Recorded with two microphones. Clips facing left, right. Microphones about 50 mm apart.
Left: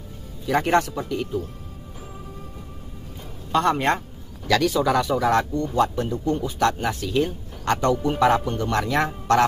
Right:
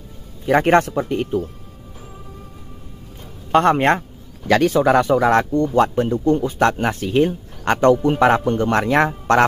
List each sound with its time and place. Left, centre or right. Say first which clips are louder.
0.5 s speech: right 6 dB; right
3.5 s speech: right 6 dB; right